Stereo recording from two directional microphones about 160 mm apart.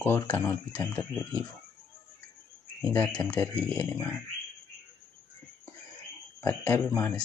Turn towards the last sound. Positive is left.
turn(degrees=15)  # may be behind; listen again after turning